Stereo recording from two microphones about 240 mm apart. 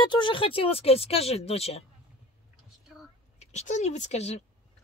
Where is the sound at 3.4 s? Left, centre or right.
Left.